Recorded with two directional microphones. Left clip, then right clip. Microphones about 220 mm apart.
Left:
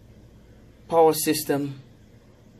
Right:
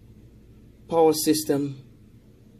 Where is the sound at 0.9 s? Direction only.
5° right (ahead or behind).